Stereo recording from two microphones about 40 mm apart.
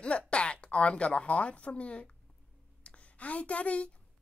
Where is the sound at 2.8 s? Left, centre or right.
Left.